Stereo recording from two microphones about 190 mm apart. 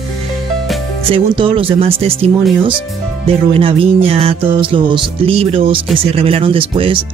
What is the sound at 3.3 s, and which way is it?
Speech, 30° right (ahead or behind).